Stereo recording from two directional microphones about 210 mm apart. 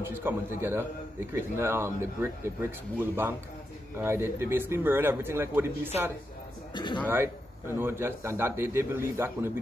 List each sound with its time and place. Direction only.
0.0 s speech: 10° right (ahead or behind)
6.7 s a man's voice: 20° left (ahead or behind)
7.8 s speech: 10° right (ahead or behind)